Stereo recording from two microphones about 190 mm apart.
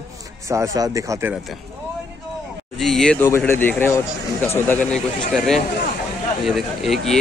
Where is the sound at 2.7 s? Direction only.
Centre (ahead or behind).